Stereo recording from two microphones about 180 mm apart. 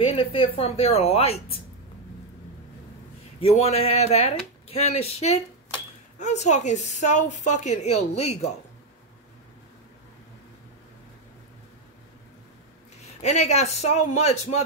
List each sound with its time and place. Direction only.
0.0 s a woman's voice: 30° left (ahead or behind)
3.3 s a woman's voice: 35° left (ahead or behind)
13.2 s a woman's voice: 40° left (ahead or behind)